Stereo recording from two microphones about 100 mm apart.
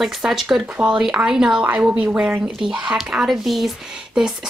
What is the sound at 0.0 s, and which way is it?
A woman's voice, 5° right (ahead or behind).